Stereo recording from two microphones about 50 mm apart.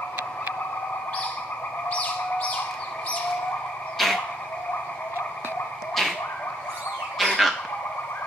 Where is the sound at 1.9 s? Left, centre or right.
Left.